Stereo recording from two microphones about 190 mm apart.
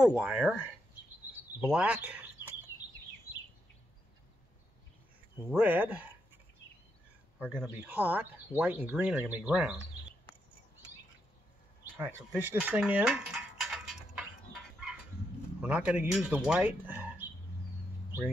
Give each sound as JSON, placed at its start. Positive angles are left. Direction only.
{"t": 0.0, "sound": "speech", "side_deg": -5}
{"t": 1.6, "sound": "speech", "side_deg": -5}
{"t": 5.5, "sound": "speech", "side_deg": -10}
{"t": 7.3, "sound": "speech", "side_deg": -5}
{"t": 12.0, "sound": "cutlery", "side_deg": -10}
{"t": 15.6, "sound": "speech", "side_deg": -5}